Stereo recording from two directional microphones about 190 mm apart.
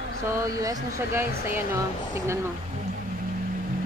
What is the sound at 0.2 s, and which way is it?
Speech, 15° right (ahead or behind).